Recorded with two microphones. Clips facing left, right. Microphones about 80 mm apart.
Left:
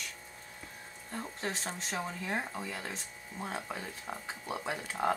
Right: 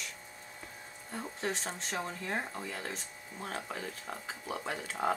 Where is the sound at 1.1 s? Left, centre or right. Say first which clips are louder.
Right 1 dB; centre.